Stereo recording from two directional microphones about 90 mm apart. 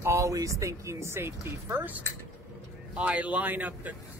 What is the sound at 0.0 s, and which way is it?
Speech, 35° right (ahead or behind).